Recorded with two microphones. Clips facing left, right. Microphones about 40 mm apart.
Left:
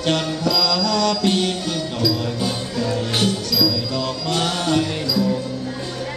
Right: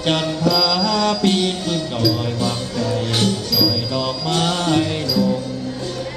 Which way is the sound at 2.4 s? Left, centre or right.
Centre.